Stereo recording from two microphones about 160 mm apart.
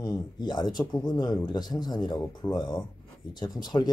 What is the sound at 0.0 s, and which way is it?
Speech, 25° left (ahead or behind).